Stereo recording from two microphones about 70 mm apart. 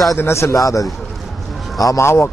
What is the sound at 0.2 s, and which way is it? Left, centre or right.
Speech, left.